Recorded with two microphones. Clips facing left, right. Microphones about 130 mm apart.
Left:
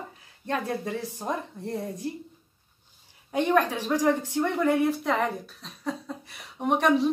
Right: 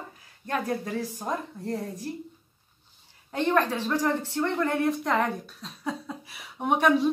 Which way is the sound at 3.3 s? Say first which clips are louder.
Left 1 dB; 15° left (ahead or behind).